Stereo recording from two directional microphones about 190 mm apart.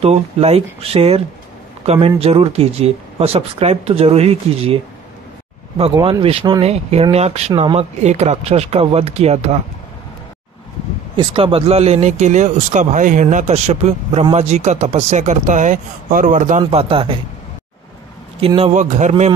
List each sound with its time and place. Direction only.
0.0 s speech: 35° right (ahead or behind)
5.9 s speech: 20° right (ahead or behind); by 9.6 s 35° right (ahead or behind)
11.1 s speech: 25° right (ahead or behind)
18.4 s speech: 30° right (ahead or behind)